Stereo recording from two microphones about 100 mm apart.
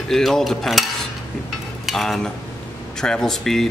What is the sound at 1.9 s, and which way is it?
Cutlery, centre (ahead or behind).